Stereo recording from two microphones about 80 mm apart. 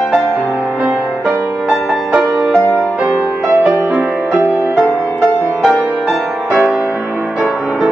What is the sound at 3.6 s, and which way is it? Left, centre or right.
Music, right.